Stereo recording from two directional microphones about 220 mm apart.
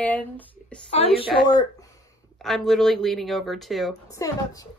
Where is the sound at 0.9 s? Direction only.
25° left (ahead or behind).